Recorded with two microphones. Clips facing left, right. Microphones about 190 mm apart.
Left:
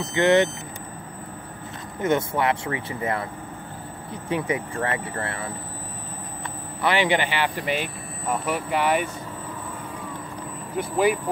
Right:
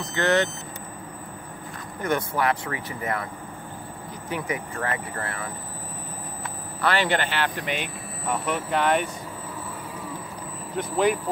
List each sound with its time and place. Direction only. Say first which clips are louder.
0.0 s speech: left 4 dB; 20° left (ahead or behind)
2.0 s speech: left 3 dB; 25° left (ahead or behind)
6.8 s speech: left 2 dB; 15° left (ahead or behind)
10.8 s speech: left 1 dB; 10° left (ahead or behind)